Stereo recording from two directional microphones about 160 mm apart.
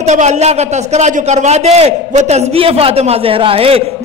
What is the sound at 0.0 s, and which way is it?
A man's voice, 45° right (ahead or behind).